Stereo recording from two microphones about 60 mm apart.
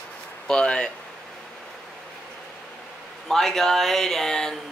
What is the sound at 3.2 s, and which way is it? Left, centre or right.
Speech, centre.